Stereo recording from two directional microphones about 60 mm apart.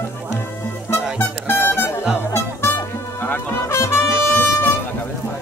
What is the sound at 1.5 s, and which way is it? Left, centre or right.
Music, left.